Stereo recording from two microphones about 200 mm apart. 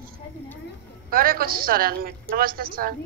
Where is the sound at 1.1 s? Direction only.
45° right (ahead or behind).